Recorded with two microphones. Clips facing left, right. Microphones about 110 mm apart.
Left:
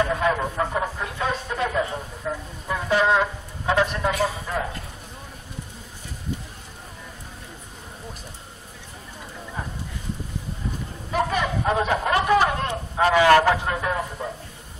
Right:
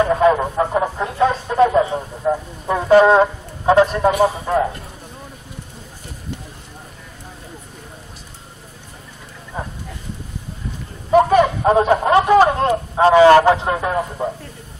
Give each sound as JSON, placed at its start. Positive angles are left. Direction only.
{"t": 0.1, "sound": "radio", "side_deg": -30}
{"t": 4.5, "sound": "a man's voice", "side_deg": -40}
{"t": 11.1, "sound": "a sound", "side_deg": -40}
{"t": 14.2, "sound": "a man's voice", "side_deg": -30}